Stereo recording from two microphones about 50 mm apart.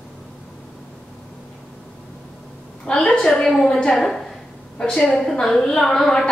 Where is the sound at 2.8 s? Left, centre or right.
Centre.